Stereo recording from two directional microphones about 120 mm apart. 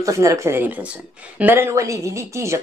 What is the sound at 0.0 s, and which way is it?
Speech, 25° right (ahead or behind).